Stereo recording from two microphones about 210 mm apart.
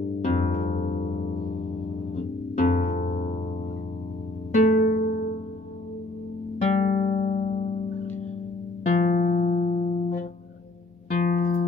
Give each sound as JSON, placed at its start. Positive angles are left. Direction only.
{"t": 0.2, "sound": "harp", "side_deg": 35}
{"t": 2.1, "sound": "music", "side_deg": 40}
{"t": 4.6, "sound": "music", "side_deg": 40}
{"t": 6.7, "sound": "music", "side_deg": 35}
{"t": 8.8, "sound": "music", "side_deg": 40}